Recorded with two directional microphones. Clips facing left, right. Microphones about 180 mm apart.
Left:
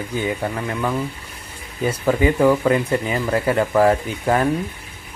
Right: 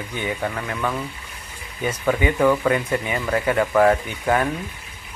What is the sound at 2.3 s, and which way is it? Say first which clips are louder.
Speech: even; 10° left (ahead or behind).